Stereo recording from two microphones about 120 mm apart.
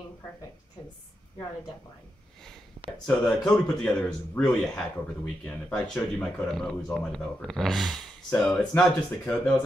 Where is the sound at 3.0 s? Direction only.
10° left (ahead or behind).